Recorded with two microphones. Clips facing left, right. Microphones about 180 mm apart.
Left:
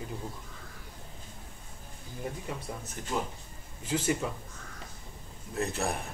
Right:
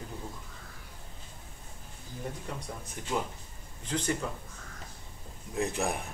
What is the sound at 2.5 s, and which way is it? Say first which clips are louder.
Speech: left 2 dB; 5° left (ahead or behind).